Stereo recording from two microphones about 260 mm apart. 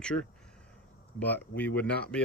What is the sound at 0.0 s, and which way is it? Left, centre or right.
Speech, centre.